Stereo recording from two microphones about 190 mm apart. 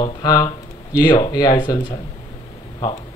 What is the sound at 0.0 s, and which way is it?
Speech, 20° left (ahead or behind).